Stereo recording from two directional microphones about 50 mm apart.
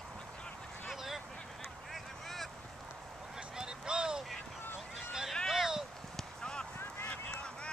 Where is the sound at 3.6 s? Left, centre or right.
Centre.